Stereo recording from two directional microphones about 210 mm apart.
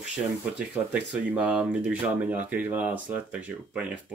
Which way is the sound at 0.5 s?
5° right (ahead or behind).